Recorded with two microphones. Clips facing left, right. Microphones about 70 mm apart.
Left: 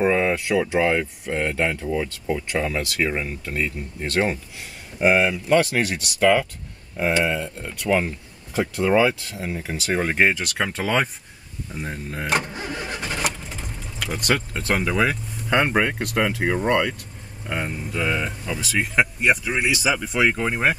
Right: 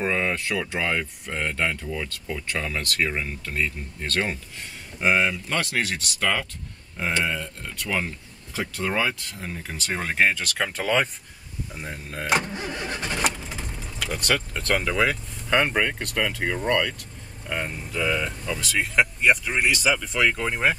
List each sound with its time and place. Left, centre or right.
0.0 s speech: centre
12.3 s vehicle: centre
17.5 s speech: centre